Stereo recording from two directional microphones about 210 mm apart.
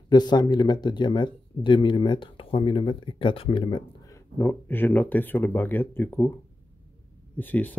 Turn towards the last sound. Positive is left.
turn(degrees=10)  # may be behind; listen again after turning